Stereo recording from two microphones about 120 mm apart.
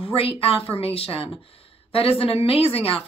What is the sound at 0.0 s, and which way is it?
A woman's voice, 50° left (ahead or behind).